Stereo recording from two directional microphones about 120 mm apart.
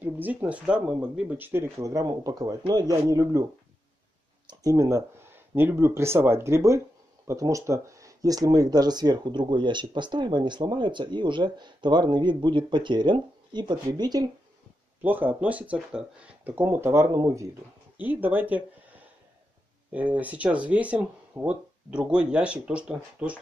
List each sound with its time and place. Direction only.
0.0 s speech: 15° right (ahead or behind)
4.5 s speech: 25° right (ahead or behind)
15.0 s speech: 15° right (ahead or behind)
17.9 s speech: 15° right (ahead or behind)